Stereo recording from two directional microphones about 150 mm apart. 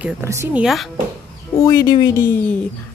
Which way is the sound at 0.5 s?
Centre (ahead or behind).